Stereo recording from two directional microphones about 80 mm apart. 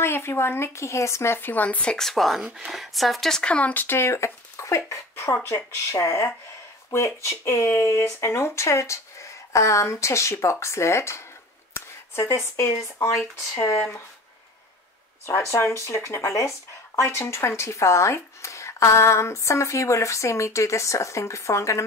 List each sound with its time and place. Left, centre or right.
0.0 s speech: left
15.5 s speech: left